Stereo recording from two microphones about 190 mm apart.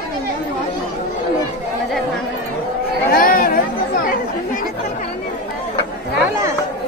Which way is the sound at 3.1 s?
50° left (ahead or behind).